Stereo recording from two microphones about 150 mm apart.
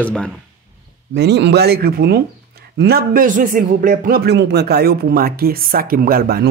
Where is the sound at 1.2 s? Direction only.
90° right.